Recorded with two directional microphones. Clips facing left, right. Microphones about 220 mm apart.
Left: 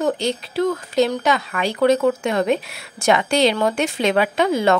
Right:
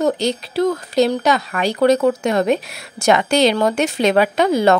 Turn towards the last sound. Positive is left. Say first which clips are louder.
# right 3 dB
turn(degrees=-40)  # may be behind; listen again after turning